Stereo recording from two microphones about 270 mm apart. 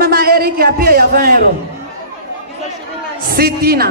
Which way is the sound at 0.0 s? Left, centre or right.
Right.